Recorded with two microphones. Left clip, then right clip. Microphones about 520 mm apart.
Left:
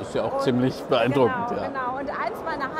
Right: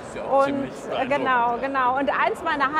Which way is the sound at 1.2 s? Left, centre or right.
Right.